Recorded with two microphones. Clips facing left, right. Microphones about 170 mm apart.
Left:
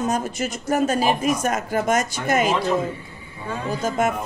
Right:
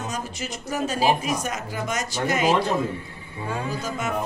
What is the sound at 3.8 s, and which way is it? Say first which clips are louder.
Speech: left 7 dB; 50° left (ahead or behind).